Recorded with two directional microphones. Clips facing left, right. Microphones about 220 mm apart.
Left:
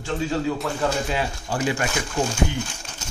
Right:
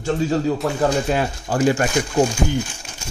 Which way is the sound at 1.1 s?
45° right (ahead or behind).